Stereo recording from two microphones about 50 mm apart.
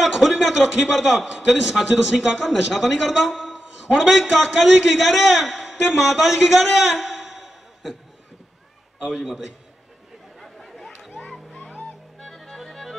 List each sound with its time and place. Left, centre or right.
0.0 s a man's voice: centre
9.1 s a man's voice: centre
10.4 s chatter: centre
11.5 s a sound: left
12.2 s music: centre